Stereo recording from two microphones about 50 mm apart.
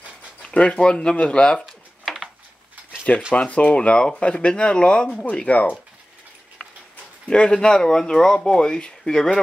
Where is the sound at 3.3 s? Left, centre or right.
Left.